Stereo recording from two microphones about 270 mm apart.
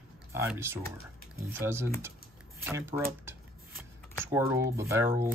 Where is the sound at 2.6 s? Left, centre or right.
Centre.